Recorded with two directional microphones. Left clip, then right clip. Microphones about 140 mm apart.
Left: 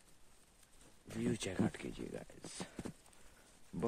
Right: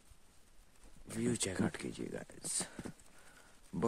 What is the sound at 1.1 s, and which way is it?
Speech, 55° right (ahead or behind).